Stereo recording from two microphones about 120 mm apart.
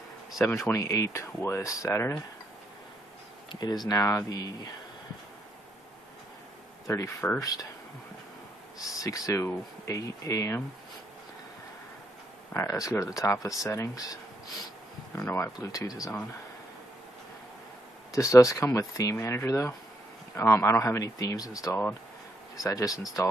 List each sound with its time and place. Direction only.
0.6 s speech: 25° left (ahead or behind)
3.5 s speech: 35° left (ahead or behind)
6.9 s speech: 25° left (ahead or behind)
8.7 s speech: 30° left (ahead or behind)
12.5 s speech: 30° left (ahead or behind)
18.1 s speech: 25° left (ahead or behind)